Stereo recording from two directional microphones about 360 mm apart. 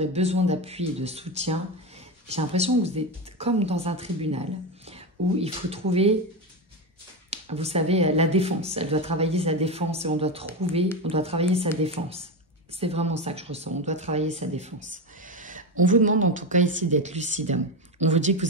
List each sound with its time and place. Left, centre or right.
0.0 s speech: centre
7.2 s speech: centre
14.8 s a sound: right
15.8 s speech: right